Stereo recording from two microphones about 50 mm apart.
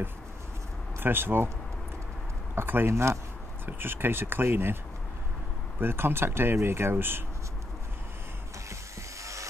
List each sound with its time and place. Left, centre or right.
0.9 s speech: right
2.5 s speech: right
2.9 s speech: right
3.6 s speech: right
5.8 s speech: right
9.2 s a sound: right